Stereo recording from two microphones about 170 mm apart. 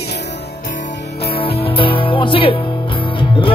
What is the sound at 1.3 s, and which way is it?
Music, 30° left (ahead or behind).